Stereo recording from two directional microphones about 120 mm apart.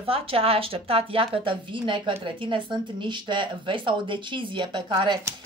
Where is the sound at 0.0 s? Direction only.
50° right (ahead or behind).